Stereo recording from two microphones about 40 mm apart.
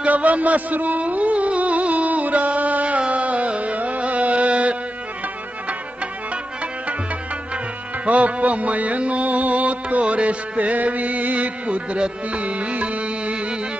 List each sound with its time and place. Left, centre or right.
0.0 s a sound: right
3.1 s music: right
8.0 s music: right